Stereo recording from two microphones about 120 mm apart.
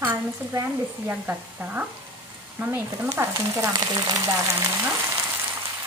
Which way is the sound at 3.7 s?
30° right (ahead or behind).